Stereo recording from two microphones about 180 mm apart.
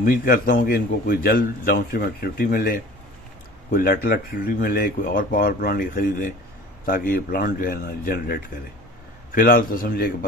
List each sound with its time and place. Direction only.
0.0 s a man's voice: 50° left (ahead or behind)